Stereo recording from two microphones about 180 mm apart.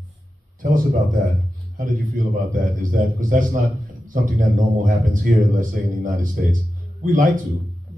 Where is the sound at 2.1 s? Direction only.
45° right (ahead or behind).